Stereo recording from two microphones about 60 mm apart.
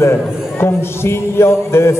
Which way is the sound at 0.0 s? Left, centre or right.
Left.